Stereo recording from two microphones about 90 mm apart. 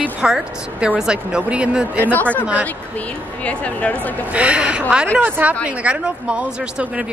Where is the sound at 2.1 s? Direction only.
15° left (ahead or behind).